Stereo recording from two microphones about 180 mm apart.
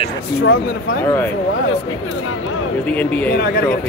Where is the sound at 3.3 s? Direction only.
60° left (ahead or behind).